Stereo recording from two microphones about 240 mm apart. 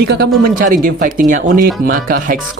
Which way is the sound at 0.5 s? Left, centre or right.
Right.